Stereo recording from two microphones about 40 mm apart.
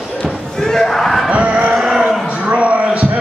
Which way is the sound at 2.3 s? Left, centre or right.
Right.